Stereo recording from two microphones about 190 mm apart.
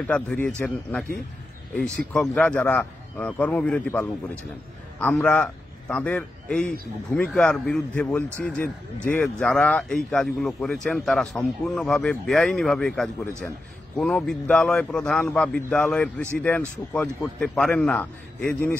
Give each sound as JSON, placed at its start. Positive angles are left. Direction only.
{"t": 0.0, "sound": "a man's voice", "side_deg": 5}